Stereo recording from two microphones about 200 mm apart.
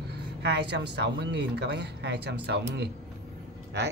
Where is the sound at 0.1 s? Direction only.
60° right (ahead or behind).